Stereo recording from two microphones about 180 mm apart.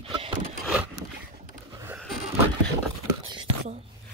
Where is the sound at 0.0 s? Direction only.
30° right (ahead or behind).